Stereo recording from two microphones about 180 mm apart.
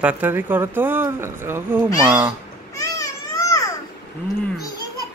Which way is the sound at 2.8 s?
20° left (ahead or behind).